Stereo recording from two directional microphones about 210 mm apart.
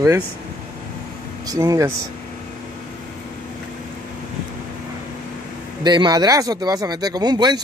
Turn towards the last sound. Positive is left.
turn(degrees=-20)  # may be behind; listen again after turning